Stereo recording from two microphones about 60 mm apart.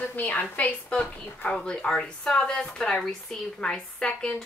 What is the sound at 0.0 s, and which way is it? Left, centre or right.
A woman's voice, left.